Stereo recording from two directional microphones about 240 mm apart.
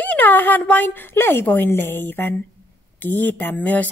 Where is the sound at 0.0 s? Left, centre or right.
Centre.